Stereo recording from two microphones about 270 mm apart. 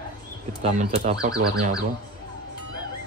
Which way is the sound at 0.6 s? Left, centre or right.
Right.